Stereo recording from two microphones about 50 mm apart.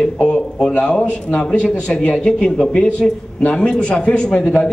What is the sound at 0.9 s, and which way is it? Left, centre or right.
A man's voice, centre.